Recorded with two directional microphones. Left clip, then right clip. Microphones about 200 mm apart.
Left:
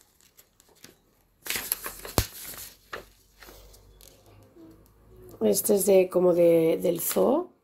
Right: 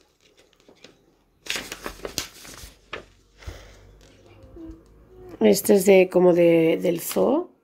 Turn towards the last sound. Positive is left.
turn(degrees=0)  # may be behind; listen again after turning